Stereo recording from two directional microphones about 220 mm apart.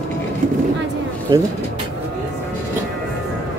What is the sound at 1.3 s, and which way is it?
Speech, 15° right (ahead or behind).